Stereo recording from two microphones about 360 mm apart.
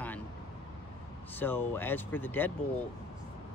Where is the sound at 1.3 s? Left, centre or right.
Centre.